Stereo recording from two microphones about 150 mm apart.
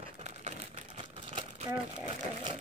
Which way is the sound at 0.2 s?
50° right (ahead or behind).